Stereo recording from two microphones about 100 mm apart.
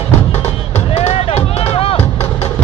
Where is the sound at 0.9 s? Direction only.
90° left; by 1.9 s 75° left (ahead or behind).